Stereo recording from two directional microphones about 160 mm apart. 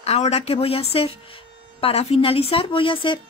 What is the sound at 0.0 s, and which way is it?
Speech, 40° left (ahead or behind).